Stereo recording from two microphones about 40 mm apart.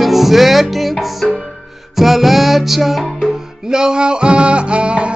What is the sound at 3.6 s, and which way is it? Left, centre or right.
Music, centre.